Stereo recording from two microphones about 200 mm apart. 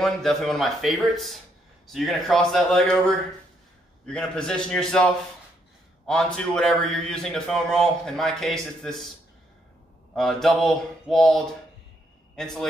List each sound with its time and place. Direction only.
0.0 s a man's voice: centre (ahead or behind)
10.1 s a man's voice: centre (ahead or behind)